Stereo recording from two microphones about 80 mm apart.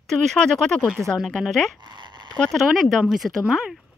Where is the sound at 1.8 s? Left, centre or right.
Right.